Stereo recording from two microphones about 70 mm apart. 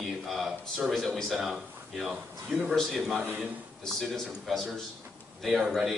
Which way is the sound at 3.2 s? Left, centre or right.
Right.